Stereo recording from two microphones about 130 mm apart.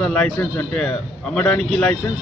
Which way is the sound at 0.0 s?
10° left (ahead or behind).